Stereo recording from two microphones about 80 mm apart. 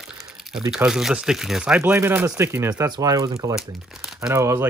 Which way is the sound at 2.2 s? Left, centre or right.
Right.